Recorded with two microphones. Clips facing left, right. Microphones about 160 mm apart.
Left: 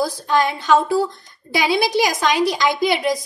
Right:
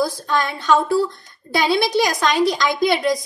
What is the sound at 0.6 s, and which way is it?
A woman's voice, 20° left (ahead or behind).